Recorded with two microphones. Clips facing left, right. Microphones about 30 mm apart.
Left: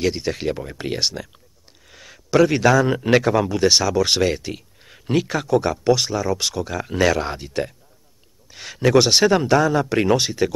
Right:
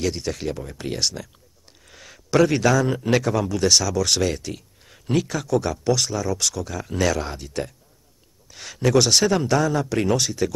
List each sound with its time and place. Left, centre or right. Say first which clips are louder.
0.0 s speech: left 3 dB; left
1.9 s a man's voice: left 2 dB; centre; by 10.5 s left